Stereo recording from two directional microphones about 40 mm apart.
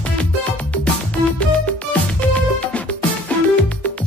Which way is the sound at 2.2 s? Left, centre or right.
Left.